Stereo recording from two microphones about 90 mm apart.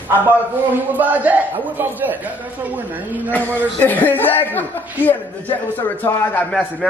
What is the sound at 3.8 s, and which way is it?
Speech, 20° left (ahead or behind).